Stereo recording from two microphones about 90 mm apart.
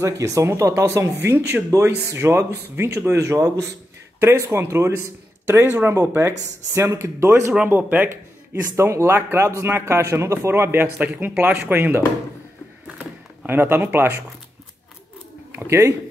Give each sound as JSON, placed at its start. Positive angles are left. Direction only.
{"t": 0.0, "sound": "speech", "side_deg": -35}
{"t": 2.1, "sound": "a man's voice", "side_deg": -25}
{"t": 4.2, "sound": "a man's voice", "side_deg": -30}
{"t": 7.6, "sound": "a man's voice", "side_deg": -20}
{"t": 8.7, "sound": "a man's voice", "side_deg": -30}
{"t": 13.5, "sound": "a man's voice", "side_deg": -25}
{"t": 15.5, "sound": "speech", "side_deg": -30}